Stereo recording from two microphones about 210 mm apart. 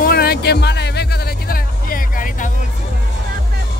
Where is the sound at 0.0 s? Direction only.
45° left (ahead or behind).